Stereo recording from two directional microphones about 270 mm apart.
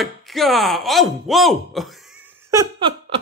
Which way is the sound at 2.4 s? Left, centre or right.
Centre.